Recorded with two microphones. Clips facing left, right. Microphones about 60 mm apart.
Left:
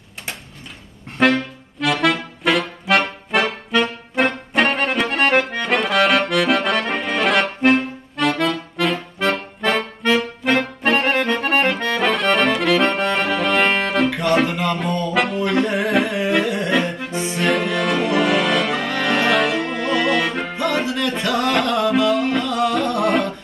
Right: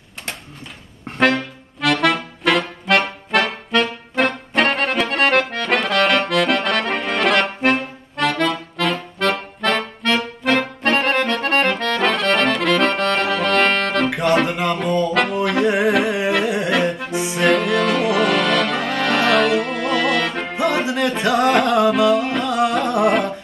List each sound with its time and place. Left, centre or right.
1.1 s music: centre
14.5 s a sound: centre
14.8 s music: centre
17.0 s accordion: centre
17.5 s music: centre
20.5 s music: centre